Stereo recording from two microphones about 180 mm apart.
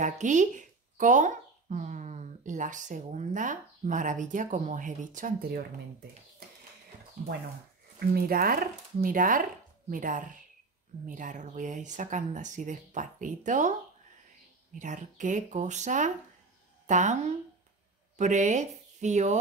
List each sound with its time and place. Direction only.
0.0 s speech: 45° right (ahead or behind)
8.1 s speech: 55° right (ahead or behind)
14.8 s a woman's voice: 45° right (ahead or behind)